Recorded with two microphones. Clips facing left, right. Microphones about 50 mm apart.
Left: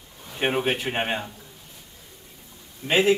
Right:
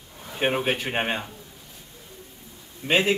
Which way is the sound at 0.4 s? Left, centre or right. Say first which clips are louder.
Even; centre.